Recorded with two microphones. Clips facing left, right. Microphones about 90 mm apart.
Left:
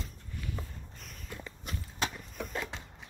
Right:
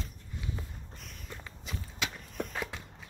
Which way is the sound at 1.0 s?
Centre (ahead or behind).